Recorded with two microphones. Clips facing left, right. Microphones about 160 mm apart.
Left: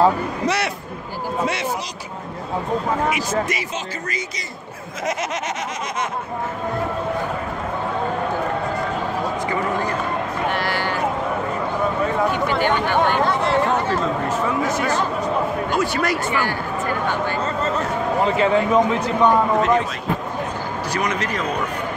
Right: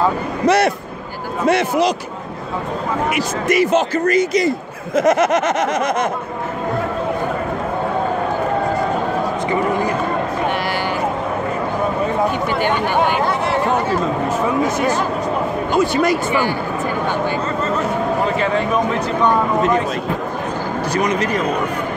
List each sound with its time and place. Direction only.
0.5 s a man's voice: 50° right (ahead or behind)
3.2 s a man's voice: 55° right (ahead or behind)
12.5 s speech: 15° right (ahead or behind)
18.2 s speech: 25° left (ahead or behind)